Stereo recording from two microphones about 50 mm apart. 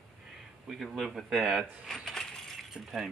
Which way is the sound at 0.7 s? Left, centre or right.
Centre.